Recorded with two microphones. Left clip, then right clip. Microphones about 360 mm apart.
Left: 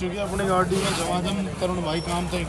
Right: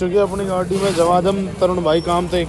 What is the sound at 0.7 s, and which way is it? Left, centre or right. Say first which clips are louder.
Speech: right 9 dB; centre.